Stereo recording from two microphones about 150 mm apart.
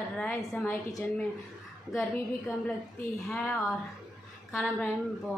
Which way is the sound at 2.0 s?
Centre (ahead or behind).